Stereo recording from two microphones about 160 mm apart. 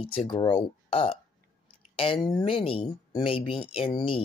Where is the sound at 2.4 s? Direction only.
35° left (ahead or behind).